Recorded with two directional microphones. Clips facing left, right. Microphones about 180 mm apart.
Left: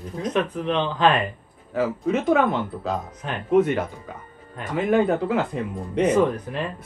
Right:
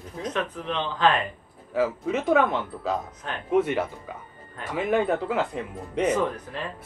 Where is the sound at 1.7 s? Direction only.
5° right (ahead or behind).